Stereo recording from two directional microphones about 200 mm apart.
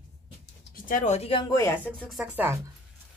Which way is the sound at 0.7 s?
40° left (ahead or behind).